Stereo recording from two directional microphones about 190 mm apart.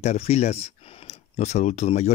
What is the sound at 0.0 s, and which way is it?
Speech, 35° left (ahead or behind).